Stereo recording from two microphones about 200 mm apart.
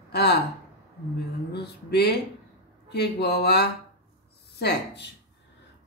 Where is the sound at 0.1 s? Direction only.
55° left (ahead or behind).